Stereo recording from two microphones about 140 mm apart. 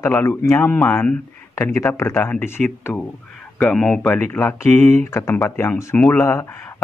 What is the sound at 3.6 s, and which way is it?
Speech, 5° left (ahead or behind).